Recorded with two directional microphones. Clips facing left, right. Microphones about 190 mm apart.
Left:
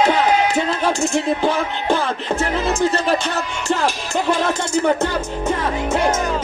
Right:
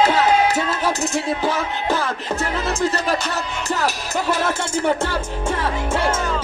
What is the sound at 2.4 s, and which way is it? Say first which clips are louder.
Music: left 3 dB; centre (ahead or behind).